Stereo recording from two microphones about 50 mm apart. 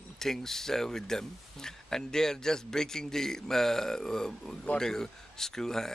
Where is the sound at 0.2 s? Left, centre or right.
Centre.